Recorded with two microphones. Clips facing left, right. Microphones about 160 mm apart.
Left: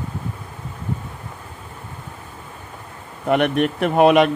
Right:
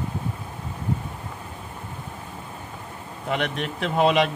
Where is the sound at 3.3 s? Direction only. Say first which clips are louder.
Left 9 dB; 55° left (ahead or behind).